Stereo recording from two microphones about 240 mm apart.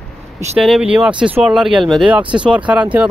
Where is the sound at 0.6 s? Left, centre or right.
Centre.